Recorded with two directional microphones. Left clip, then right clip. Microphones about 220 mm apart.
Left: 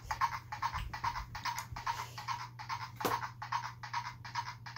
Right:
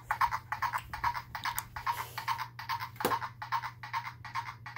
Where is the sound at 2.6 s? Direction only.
35° right (ahead or behind).